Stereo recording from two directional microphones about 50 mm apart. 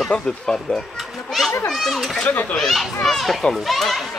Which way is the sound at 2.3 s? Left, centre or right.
Left.